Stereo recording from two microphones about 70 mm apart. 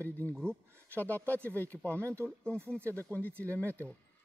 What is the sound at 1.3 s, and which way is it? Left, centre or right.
Speech, left.